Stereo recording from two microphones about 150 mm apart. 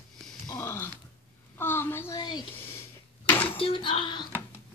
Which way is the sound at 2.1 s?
30° left (ahead or behind).